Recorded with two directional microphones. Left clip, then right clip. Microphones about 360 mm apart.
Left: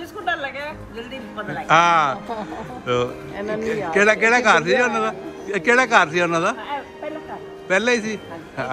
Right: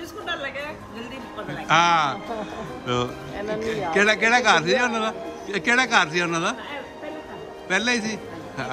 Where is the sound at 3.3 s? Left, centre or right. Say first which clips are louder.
Even; left.